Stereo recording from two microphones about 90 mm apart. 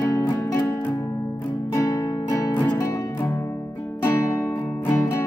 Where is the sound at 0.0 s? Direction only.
35° left (ahead or behind).